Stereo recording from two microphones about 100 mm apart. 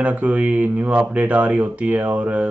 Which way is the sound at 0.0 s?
15° right (ahead or behind).